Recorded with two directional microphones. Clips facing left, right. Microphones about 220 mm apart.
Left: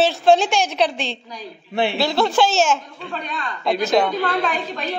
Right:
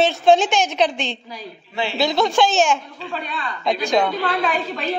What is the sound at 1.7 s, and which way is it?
Speech, 55° left (ahead or behind).